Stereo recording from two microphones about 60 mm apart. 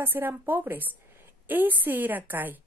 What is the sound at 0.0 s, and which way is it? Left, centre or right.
A woman's voice, right.